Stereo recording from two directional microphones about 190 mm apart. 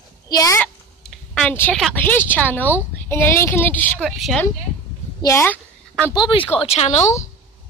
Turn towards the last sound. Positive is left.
turn(degrees=35)  # may be behind; listen again after turning